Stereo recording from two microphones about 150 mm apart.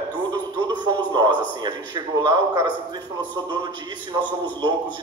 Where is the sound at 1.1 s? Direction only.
30° right (ahead or behind).